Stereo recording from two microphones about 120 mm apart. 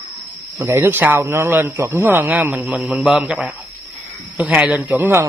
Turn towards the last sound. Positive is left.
turn(degrees=-15)  # may be behind; listen again after turning